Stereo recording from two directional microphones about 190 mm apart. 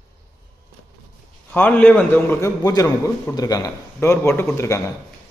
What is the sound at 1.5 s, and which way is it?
A man's voice, 5° left (ahead or behind).